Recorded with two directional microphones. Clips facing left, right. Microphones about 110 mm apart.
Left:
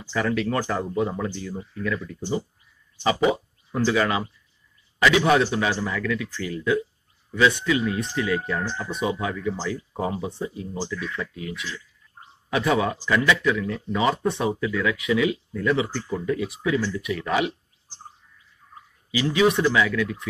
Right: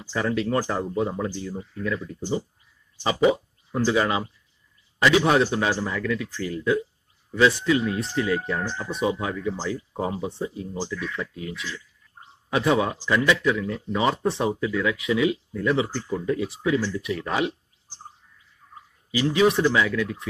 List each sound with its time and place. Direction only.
0.2 s speech: 30° right (ahead or behind)
3.7 s a man's voice: 25° right (ahead or behind)
19.1 s a man's voice: 30° right (ahead or behind)